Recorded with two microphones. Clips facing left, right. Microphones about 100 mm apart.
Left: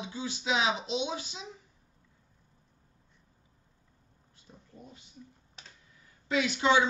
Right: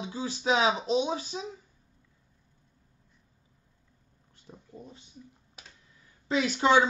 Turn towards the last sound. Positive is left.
turn(degrees=-40)  # may be behind; listen again after turning